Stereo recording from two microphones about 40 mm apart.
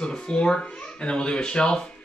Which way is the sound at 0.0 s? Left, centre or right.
Left.